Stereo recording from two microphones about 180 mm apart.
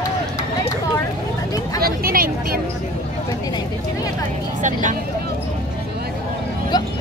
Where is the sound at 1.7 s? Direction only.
55° right (ahead or behind).